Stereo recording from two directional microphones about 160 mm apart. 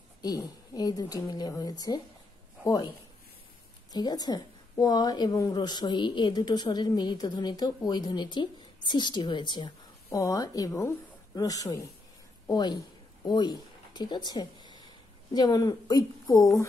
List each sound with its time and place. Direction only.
0.2 s a woman's voice: 25° left (ahead or behind)
3.9 s a woman's voice: 25° left (ahead or behind)
12.4 s a sound: 25° left (ahead or behind)
15.3 s a woman's voice: 25° left (ahead or behind)